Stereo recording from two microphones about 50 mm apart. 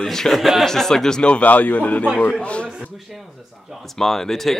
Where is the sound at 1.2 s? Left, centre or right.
Left.